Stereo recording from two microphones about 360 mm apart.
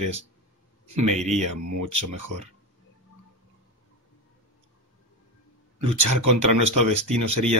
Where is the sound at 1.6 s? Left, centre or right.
Right.